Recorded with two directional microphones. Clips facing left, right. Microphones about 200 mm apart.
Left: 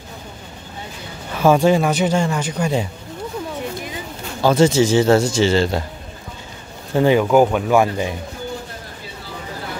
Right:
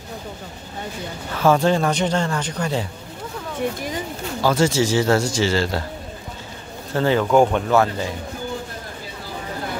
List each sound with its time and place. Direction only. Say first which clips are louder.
1.3 s speech: left 3 dB; 15° left (ahead or behind)
4.4 s speech: left 4 dB; 20° left (ahead or behind)
6.9 s speech: left 3 dB; 15° left (ahead or behind)